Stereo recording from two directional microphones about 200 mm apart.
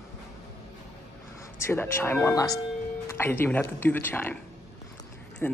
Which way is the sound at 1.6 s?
10° left (ahead or behind).